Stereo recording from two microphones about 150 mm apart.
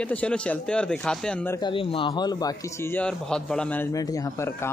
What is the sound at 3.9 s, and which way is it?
Speech, 25° left (ahead or behind).